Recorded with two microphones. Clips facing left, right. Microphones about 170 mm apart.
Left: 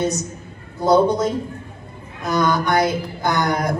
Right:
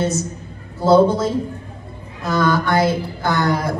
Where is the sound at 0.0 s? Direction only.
15° left (ahead or behind).